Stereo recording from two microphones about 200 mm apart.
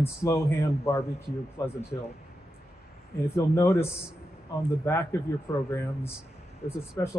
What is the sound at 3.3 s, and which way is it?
A man's voice, 15° left (ahead or behind).